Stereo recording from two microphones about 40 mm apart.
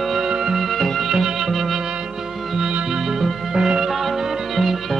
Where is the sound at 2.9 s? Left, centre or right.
Centre.